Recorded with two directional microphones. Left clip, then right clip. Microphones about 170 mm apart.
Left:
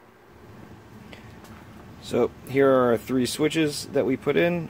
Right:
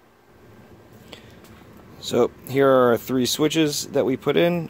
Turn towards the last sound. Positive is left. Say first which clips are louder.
# right 3 dB
turn(degrees=-35)  # may be behind; listen again after turning